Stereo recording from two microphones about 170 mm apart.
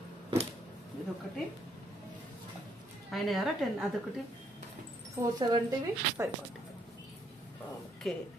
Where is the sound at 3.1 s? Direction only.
Centre (ahead or behind).